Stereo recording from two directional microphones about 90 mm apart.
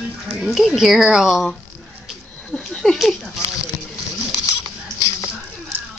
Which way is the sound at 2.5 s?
5° left (ahead or behind).